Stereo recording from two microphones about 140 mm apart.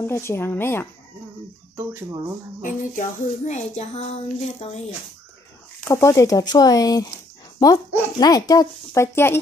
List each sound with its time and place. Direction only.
0.0 s speech: 20° left (ahead or behind)
2.6 s speech: 60° left (ahead or behind)
5.9 s speech: 20° left (ahead or behind)